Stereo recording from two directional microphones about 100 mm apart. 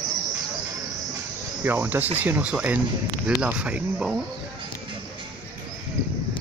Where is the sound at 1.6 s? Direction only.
20° right (ahead or behind).